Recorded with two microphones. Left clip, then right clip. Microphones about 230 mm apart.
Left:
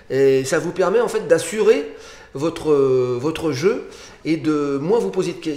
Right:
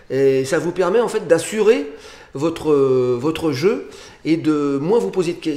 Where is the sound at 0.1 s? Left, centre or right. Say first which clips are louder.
Even; centre.